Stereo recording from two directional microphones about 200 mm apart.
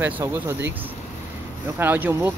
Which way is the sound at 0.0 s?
10° right (ahead or behind).